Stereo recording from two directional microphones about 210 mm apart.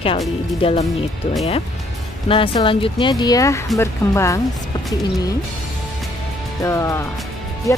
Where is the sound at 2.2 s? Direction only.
25° left (ahead or behind).